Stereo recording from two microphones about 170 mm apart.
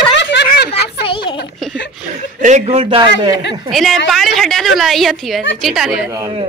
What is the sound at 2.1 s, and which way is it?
Speech, 45° right (ahead or behind).